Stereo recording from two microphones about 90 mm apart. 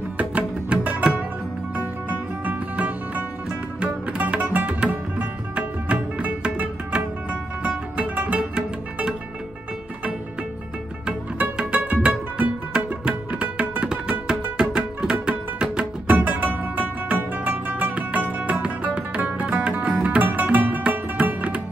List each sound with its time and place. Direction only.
0.2 s music: 15° right (ahead or behind)
11.1 s music: 15° right (ahead or behind)